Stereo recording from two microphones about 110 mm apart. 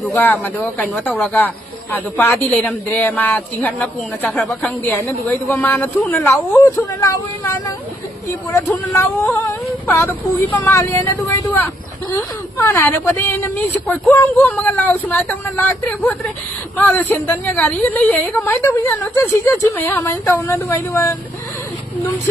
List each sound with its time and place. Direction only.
0.2 s speech: 15° left (ahead or behind)
5.2 s a woman's voice: 20° left (ahead or behind)
6.6 s speech: 30° left (ahead or behind)
8.8 s a woman's voice: 20° left (ahead or behind)
12.5 s a woman's voice: 20° left (ahead or behind)